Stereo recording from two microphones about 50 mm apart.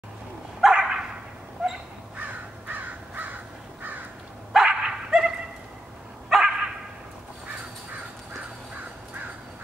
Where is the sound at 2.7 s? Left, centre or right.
Right.